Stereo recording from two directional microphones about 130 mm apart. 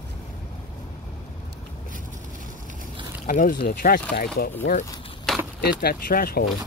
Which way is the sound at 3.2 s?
85° left.